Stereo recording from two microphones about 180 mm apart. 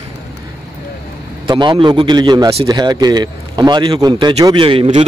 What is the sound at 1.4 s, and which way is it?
A man's voice, 25° right (ahead or behind).